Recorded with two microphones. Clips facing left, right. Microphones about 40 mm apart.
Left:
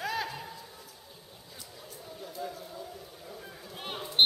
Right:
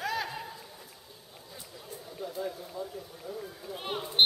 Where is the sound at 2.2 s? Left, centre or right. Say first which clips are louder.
Right 4 dB; centre.